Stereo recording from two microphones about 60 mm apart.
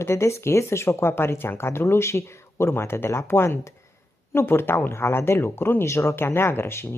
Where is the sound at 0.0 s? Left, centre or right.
Left.